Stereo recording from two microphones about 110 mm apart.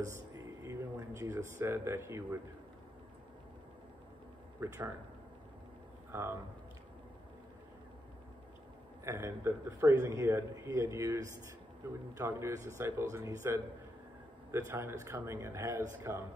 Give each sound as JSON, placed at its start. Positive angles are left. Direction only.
{"t": 0.7, "sound": "speech", "side_deg": -25}
{"t": 4.6, "sound": "speech", "side_deg": -30}
{"t": 6.1, "sound": "speech", "side_deg": -20}
{"t": 9.0, "sound": "speech", "side_deg": -25}
{"t": 14.7, "sound": "speech", "side_deg": -20}